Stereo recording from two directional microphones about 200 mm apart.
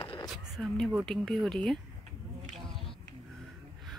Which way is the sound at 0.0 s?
25° left (ahead or behind).